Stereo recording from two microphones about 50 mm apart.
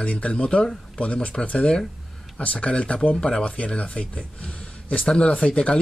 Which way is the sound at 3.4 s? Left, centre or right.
Left.